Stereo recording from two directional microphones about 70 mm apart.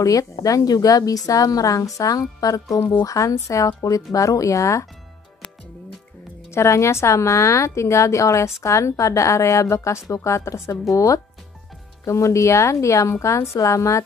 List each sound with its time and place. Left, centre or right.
0.0 s a woman's voice: left
6.5 s a woman's voice: left